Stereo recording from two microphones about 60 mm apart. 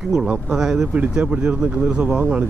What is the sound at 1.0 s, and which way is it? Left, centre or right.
Speech, right.